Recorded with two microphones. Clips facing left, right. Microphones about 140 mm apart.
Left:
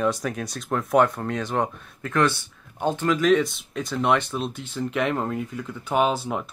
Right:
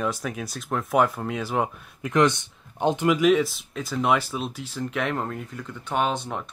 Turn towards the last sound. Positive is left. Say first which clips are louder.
# left 3 dB
turn(degrees=5)  # may be behind; listen again after turning